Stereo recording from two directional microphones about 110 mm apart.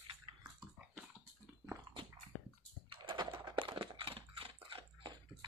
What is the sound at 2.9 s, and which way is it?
Typing, 45° right (ahead or behind).